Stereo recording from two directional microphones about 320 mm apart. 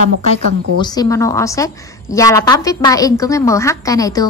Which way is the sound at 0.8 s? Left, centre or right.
Centre.